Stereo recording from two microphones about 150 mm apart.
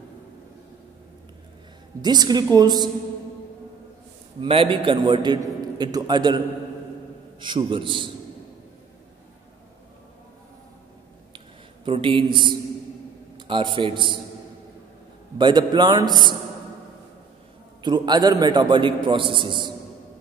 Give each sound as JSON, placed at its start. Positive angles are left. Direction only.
{"t": 2.0, "sound": "a man's voice", "side_deg": -30}
{"t": 4.4, "sound": "a man's voice", "side_deg": -35}
{"t": 11.3, "sound": "a sound", "side_deg": -35}
{"t": 13.5, "sound": "a man's voice", "side_deg": -35}
{"t": 15.3, "sound": "a man's voice", "side_deg": -30}
{"t": 17.8, "sound": "a man's voice", "side_deg": -30}